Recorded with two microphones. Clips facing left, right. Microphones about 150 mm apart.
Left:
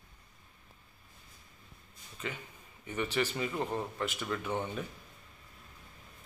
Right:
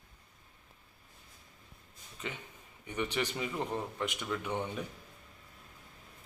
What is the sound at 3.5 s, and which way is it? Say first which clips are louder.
A man's voice: left 1 dB; 5° left (ahead or behind).